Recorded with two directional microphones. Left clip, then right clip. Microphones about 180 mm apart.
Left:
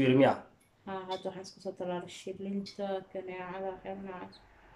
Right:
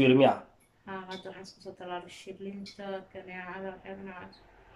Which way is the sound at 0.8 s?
25° left (ahead or behind).